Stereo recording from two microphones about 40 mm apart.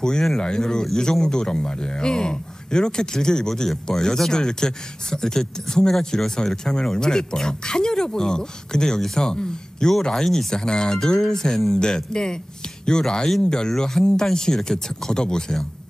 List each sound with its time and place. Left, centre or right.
0.4 s a man's voice: centre